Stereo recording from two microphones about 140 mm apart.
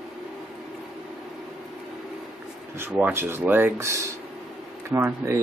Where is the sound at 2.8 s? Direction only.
10° right (ahead or behind).